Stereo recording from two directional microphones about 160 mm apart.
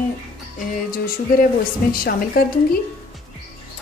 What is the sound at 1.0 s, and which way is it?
Speech, 65° left (ahead or behind).